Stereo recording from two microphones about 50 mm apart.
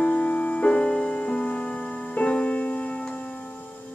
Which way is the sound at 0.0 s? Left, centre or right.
Left.